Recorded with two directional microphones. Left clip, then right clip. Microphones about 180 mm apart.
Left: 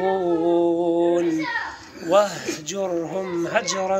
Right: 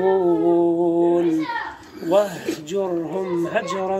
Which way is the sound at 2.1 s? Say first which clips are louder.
Even; 10° right (ahead or behind).